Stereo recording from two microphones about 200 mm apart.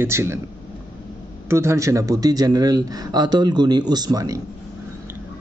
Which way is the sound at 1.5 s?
15° right (ahead or behind).